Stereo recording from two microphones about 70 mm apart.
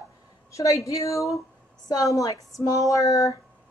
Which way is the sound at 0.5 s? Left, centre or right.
Left.